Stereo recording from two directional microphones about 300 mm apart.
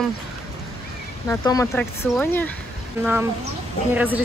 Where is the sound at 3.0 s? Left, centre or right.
Centre.